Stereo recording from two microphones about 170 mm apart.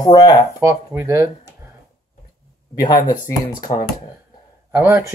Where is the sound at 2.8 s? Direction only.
25° left (ahead or behind).